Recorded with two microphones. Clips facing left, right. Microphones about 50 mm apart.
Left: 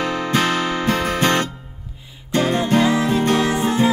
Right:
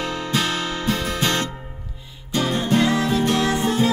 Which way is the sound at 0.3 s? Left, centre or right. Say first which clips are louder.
Left 4 dB; left.